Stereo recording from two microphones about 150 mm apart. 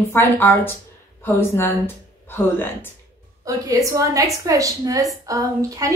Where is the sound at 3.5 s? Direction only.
20° right (ahead or behind).